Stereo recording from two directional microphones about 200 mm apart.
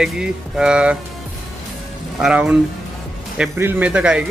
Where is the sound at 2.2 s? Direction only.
5° right (ahead or behind).